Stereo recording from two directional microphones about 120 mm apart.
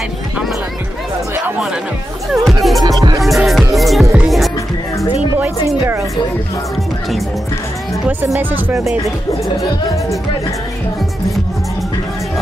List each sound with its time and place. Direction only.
2.3 s speech: centre (ahead or behind)
2.8 s music: 35° right (ahead or behind)
3.2 s music: centre (ahead or behind)
8.4 s speech: 15° right (ahead or behind)